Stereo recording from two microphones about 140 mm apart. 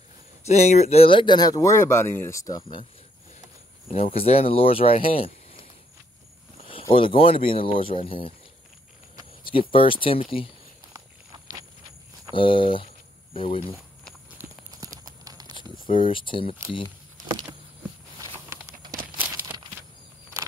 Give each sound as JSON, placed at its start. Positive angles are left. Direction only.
{"t": 0.5, "sound": "speech", "side_deg": 55}
{"t": 3.9, "sound": "speech", "side_deg": 45}
{"t": 6.7, "sound": "speech", "side_deg": 40}
{"t": 9.4, "sound": "speech", "side_deg": 40}
{"t": 12.3, "sound": "speech", "side_deg": 35}
{"t": 14.4, "sound": "clip-clop", "side_deg": -15}
{"t": 15.2, "sound": "a sound", "side_deg": -30}
{"t": 15.9, "sound": "speech", "side_deg": 40}
{"t": 16.8, "sound": "a sound", "side_deg": -35}
{"t": 19.1, "sound": "a sound", "side_deg": -15}